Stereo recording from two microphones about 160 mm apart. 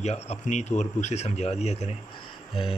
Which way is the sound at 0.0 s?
45° left (ahead or behind).